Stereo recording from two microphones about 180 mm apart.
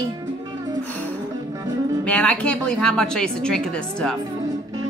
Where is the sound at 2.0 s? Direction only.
5° left (ahead or behind).